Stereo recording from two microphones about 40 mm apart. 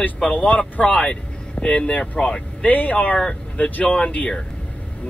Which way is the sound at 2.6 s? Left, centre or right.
Left.